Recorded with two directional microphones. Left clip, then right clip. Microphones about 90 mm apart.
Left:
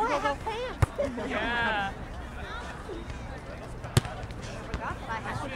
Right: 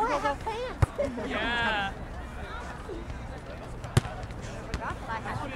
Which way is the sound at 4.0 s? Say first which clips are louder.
Left 1 dB; 20° left (ahead or behind).